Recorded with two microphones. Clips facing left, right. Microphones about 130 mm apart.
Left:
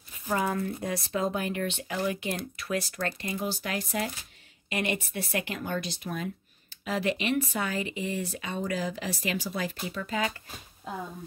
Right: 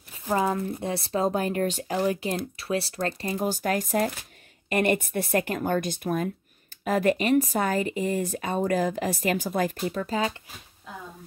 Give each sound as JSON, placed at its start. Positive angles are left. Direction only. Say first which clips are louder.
{"t": 0.3, "sound": "speech", "louder": "right 3 dB", "side_deg": -30}